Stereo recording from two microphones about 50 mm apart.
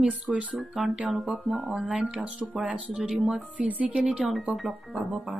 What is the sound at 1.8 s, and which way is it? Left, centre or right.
Speech, centre.